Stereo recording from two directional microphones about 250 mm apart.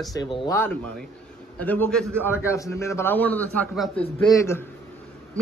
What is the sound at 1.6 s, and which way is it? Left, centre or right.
A man's voice, centre.